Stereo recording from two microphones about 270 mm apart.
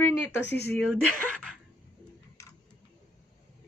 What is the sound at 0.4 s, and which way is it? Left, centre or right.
Speech, left.